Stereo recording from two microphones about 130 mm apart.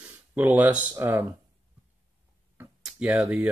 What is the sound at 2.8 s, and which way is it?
Speech, 10° right (ahead or behind).